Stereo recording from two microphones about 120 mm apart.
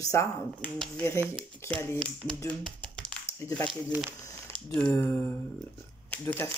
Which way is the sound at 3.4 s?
25° left (ahead or behind).